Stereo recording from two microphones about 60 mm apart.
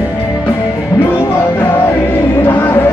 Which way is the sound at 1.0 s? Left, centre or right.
Left.